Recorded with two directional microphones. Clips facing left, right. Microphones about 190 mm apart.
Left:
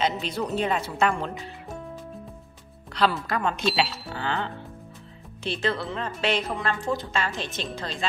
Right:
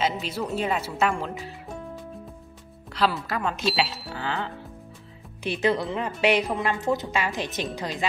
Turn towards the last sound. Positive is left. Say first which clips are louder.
# right 3 dB
turn(degrees=-15)  # may be behind; listen again after turning